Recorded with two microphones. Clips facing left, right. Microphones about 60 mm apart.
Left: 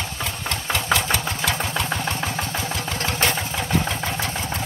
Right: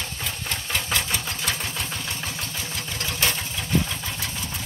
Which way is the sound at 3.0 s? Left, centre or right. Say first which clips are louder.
Left 3 dB; left.